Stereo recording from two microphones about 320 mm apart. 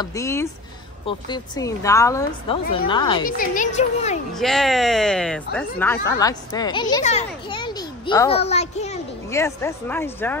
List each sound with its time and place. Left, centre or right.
0.0 s speech: centre
3.3 s speech: left
4.3 s speech: centre; by 9.0 s left
9.3 s speech: centre